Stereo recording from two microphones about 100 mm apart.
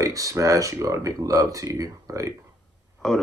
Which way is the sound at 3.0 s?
5° left (ahead or behind).